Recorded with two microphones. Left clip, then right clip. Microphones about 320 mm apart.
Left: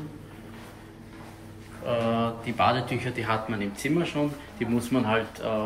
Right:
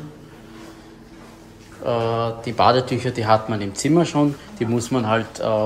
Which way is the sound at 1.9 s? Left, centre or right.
Centre.